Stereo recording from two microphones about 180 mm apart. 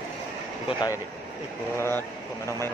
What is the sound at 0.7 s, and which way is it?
Speech, 25° left (ahead or behind).